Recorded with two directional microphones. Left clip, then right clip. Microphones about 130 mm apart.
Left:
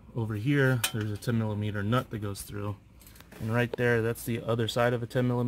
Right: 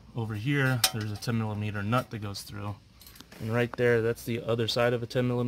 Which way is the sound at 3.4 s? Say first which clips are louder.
Right 1 dB; 5° right (ahead or behind).